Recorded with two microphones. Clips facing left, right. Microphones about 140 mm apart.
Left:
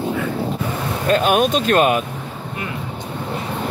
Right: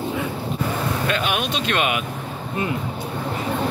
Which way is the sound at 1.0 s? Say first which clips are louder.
Left 12 dB; 40° left (ahead or behind).